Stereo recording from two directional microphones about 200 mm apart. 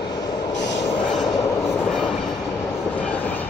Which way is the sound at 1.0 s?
Centre (ahead or behind).